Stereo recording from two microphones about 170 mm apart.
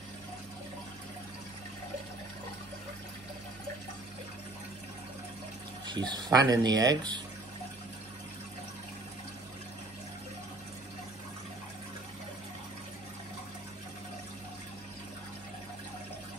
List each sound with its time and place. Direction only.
5.9 s speech: 25° right (ahead or behind)